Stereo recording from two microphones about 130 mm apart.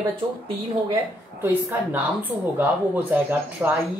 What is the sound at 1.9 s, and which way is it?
Speech, 15° right (ahead or behind).